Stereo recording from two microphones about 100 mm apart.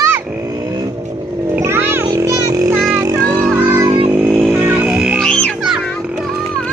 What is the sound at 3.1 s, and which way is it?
Vehicle, 35° right (ahead or behind).